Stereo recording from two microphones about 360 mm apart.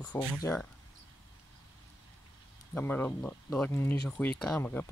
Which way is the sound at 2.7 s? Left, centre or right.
Centre.